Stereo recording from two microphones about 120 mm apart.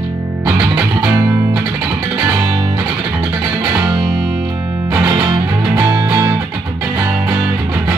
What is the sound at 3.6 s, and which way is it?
Music, 35° right (ahead or behind).